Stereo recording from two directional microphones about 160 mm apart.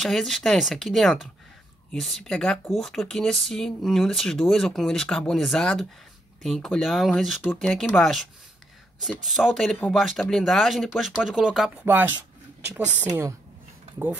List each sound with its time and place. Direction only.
0.0 s speech: centre (ahead or behind); by 13.3 s 15° right (ahead or behind)